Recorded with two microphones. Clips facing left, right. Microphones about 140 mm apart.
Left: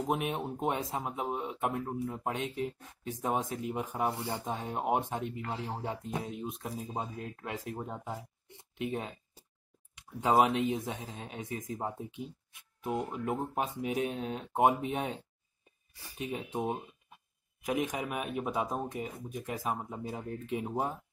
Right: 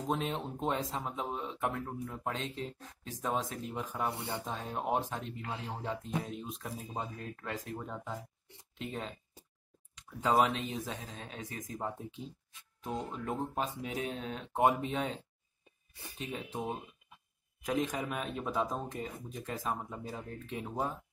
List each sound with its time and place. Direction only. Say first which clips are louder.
0.1 s speech: even; 20° left (ahead or behind)